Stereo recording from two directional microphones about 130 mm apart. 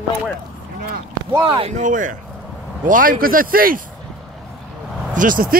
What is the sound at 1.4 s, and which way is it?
Speech, 40° right (ahead or behind).